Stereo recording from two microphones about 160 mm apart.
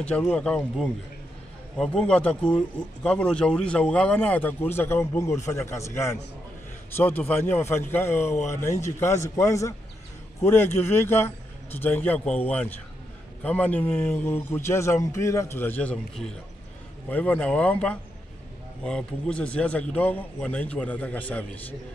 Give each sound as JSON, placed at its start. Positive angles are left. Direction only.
{"t": 0.0, "sound": "speech", "side_deg": 10}
{"t": 9.4, "sound": "a man's voice", "side_deg": 20}